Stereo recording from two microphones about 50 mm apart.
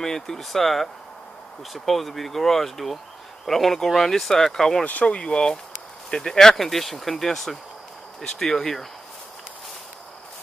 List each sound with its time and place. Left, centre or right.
0.0 s speech: centre
4.8 s speech: left; by 8.8 s centre